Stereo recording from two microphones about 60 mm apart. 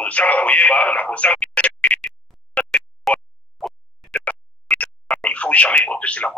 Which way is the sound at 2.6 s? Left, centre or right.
Left.